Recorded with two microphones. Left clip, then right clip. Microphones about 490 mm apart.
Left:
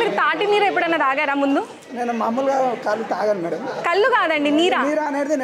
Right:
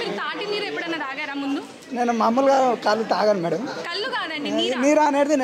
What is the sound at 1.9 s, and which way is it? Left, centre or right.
A woman's voice, right.